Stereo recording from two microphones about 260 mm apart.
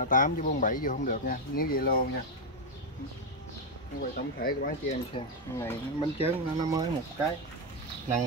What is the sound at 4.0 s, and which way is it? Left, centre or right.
Speech, left.